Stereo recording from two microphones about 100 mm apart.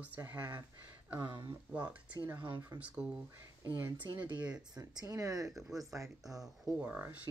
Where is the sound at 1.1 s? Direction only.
50° right (ahead or behind).